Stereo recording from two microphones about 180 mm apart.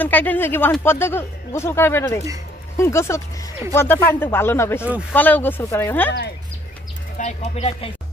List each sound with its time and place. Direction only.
0.0 s speech: 10° left (ahead or behind)
7.2 s speech: 40° left (ahead or behind)